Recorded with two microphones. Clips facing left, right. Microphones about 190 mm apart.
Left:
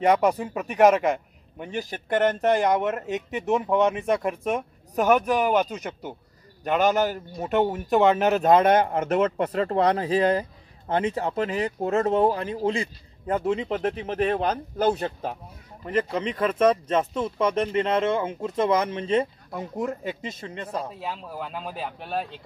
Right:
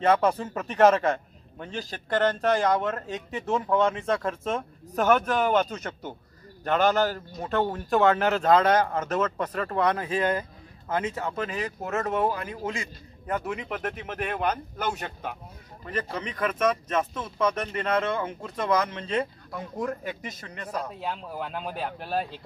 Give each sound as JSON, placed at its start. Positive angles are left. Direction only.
{"t": 0.0, "sound": "a man's voice", "side_deg": 15}
{"t": 20.9, "sound": "speech", "side_deg": 0}